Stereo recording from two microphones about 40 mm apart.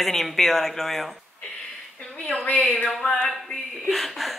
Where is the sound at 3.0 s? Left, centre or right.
Left.